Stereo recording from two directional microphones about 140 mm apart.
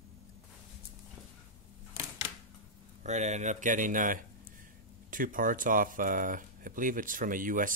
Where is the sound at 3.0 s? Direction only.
55° right (ahead or behind).